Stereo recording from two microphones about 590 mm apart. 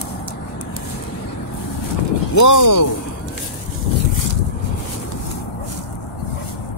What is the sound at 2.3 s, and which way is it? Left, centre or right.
Speech, left.